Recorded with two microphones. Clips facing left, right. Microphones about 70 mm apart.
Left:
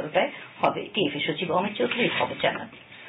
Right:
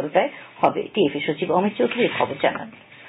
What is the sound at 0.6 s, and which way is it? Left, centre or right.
Speech, centre.